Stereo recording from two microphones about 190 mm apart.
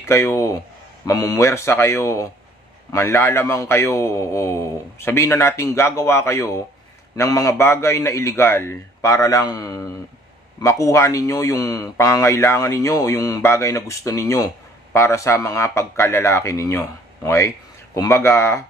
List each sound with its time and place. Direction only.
0.0 s speech: 15° left (ahead or behind)